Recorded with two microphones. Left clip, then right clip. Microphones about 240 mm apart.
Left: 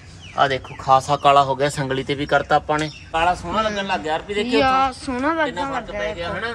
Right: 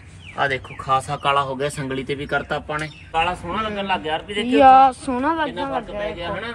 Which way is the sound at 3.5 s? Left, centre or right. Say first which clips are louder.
Left 2 dB; centre.